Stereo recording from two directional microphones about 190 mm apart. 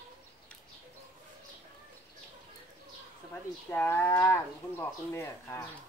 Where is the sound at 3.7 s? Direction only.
10° left (ahead or behind).